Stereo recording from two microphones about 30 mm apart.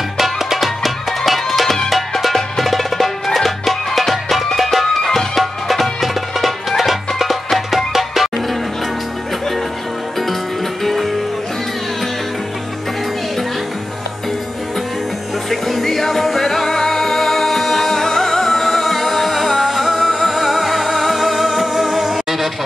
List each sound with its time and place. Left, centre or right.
0.2 s music: centre
4.8 s music: centre
5.3 s music: centre
10.8 s music: centre
15.5 s music: centre
18.6 s music: centre